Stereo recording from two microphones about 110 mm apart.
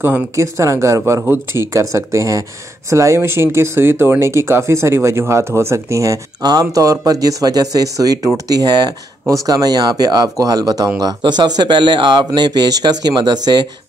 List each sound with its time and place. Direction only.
0.0 s speech: 25° right (ahead or behind); by 13.4 s 40° right (ahead or behind)